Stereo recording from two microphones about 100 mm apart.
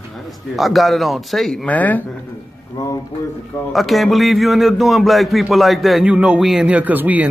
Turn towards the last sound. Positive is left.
turn(degrees=-15)  # may be behind; listen again after turning